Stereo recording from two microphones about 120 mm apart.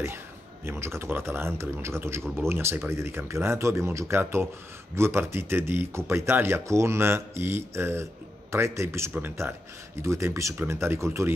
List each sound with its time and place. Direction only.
0.7 s speech: 20° right (ahead or behind)